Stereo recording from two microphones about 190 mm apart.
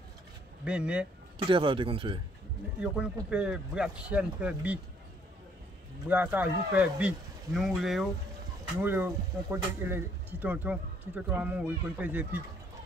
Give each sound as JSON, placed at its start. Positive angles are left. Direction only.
{"t": 0.7, "sound": "speech", "side_deg": -5}
{"t": 1.5, "sound": "speech", "side_deg": -25}
{"t": 2.8, "sound": "speech", "side_deg": -5}
{"t": 6.0, "sound": "speech", "side_deg": -10}
{"t": 8.8, "sound": "speech", "side_deg": -10}